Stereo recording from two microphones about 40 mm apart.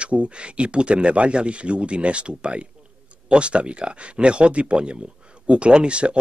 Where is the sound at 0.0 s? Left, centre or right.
Right.